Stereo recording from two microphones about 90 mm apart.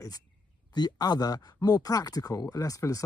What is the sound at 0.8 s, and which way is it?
Speech, 50° left (ahead or behind).